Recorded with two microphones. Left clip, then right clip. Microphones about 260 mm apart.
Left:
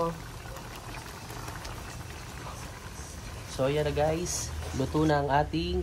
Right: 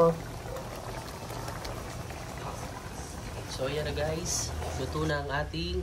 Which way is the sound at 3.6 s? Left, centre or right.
Centre.